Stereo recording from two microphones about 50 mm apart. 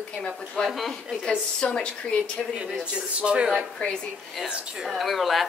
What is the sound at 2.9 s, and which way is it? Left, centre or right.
Speech, right.